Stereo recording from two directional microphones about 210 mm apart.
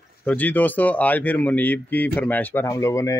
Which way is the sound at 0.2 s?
10° left (ahead or behind).